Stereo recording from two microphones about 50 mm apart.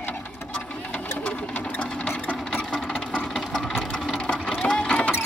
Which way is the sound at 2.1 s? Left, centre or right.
Left.